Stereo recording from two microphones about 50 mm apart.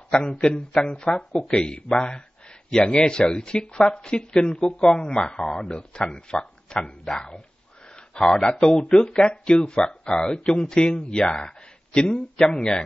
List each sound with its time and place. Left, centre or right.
0.1 s speech: centre